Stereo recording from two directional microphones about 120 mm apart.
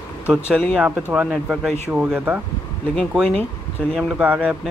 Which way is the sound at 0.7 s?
10° right (ahead or behind).